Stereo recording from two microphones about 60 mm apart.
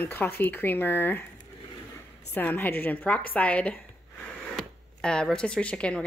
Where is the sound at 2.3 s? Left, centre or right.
Left.